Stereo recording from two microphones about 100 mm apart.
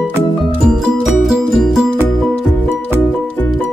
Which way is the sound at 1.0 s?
5° right (ahead or behind).